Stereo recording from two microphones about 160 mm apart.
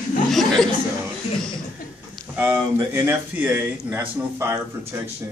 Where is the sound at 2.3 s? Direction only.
15° right (ahead or behind).